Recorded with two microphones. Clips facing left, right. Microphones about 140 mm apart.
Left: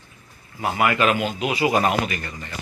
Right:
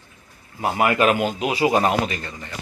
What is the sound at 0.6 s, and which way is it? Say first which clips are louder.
A man's voice: right 2 dB; 30° right (ahead or behind).